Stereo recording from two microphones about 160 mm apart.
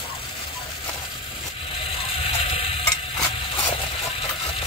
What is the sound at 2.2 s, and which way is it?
Ratchet, 35° left (ahead or behind).